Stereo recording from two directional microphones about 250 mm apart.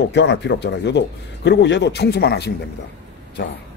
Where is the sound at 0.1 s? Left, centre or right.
Left.